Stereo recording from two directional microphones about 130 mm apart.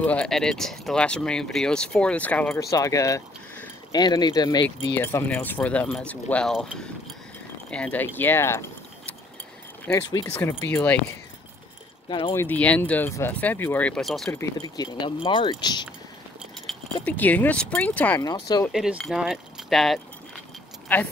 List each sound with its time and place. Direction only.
0.0 s speech: 10° left (ahead or behind)
2.7 s speech: 25° left (ahead or behind)
4.9 s speech: 15° left (ahead or behind)
9.9 s speech: 20° left (ahead or behind)
12.1 s speech: 35° left (ahead or behind)
12.4 s speech: 10° left (ahead or behind)
14.3 s speech: 25° left (ahead or behind)
15.2 s speech: 40° left (ahead or behind)
16.7 s keys jangling: centre (ahead or behind)
17.0 s speech: 15° left (ahead or behind)
18.2 s speech: 30° left (ahead or behind)
18.7 s speech: 5° right (ahead or behind)
20.9 s speech: 15° left (ahead or behind)